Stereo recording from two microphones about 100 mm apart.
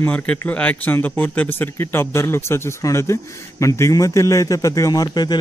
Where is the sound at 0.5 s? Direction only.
15° left (ahead or behind).